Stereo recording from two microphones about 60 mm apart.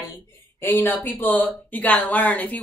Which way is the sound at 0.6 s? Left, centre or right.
Left.